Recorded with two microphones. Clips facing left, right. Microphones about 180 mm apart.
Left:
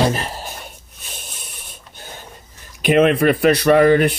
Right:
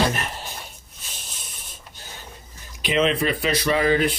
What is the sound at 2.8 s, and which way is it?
Speech, 55° left (ahead or behind).